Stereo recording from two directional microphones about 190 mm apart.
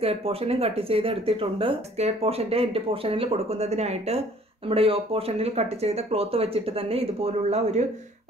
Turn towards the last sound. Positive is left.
turn(degrees=-35)  # may be behind; listen again after turning